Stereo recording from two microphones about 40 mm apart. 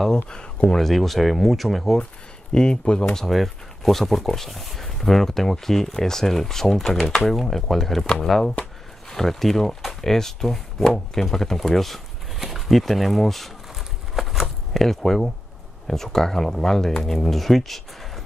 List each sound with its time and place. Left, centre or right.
0.1 s speech: left
0.7 s speech: centre
2.5 s speech: left
3.2 s speech: centre
13.7 s a sound: centre
15.9 s speech: centre